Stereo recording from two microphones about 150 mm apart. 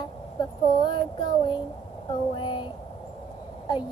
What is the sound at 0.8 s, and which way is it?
Child singing, 30° left (ahead or behind).